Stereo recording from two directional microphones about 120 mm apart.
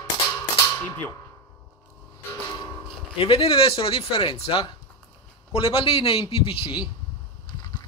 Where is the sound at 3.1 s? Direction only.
50° left (ahead or behind).